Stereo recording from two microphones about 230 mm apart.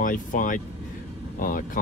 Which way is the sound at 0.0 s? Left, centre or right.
Left.